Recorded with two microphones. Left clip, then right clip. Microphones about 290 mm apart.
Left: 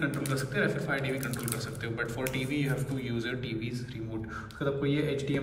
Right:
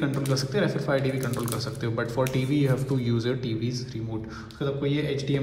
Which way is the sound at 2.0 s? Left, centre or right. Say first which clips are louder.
Right 6 dB; centre.